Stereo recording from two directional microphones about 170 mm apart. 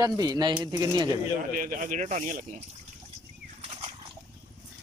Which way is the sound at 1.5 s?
50° right (ahead or behind).